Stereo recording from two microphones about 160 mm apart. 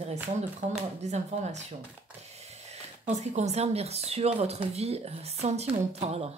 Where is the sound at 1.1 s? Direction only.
45° right (ahead or behind).